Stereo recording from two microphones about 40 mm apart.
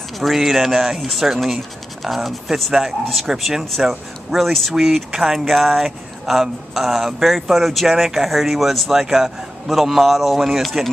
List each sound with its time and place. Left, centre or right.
0.2 s speech: centre
3.3 s speech: centre
4.3 s speech: centre
8.8 s speech: centre